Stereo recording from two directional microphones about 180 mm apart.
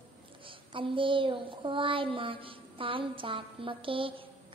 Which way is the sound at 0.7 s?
30° right (ahead or behind).